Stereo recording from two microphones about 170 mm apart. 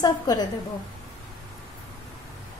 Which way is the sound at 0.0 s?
20° left (ahead or behind).